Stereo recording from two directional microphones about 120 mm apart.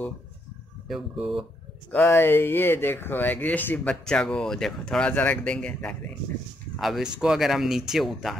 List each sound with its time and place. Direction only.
0.8 s speech: 5° right (ahead or behind)
1.9 s speech: 20° left (ahead or behind)
6.8 s speech: 5° right (ahead or behind)